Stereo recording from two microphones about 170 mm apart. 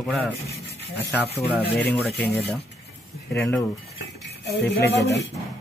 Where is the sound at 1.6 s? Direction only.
70° left (ahead or behind).